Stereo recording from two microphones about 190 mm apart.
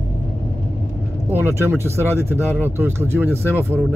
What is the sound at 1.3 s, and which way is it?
Speech, 10° right (ahead or behind).